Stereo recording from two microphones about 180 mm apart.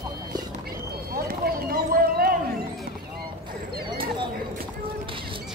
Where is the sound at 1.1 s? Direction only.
55° right (ahead or behind).